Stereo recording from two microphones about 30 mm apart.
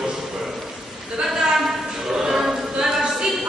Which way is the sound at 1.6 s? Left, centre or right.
Centre.